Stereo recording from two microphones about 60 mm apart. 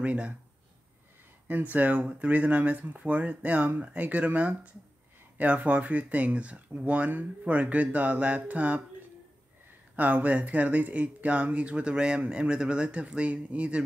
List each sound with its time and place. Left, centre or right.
0.0 s speech: right
1.5 s speech: right
9.9 s speech: right